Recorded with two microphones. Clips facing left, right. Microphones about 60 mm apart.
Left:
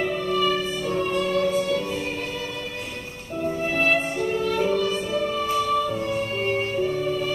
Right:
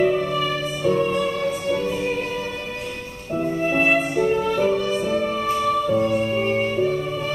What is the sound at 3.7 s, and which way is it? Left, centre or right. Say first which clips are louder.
Music: right 4 dB; right.